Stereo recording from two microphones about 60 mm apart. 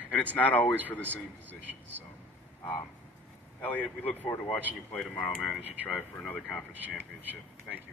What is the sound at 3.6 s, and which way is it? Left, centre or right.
A man's voice, left.